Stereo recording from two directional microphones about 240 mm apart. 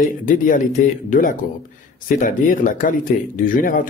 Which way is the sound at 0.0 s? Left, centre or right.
Left.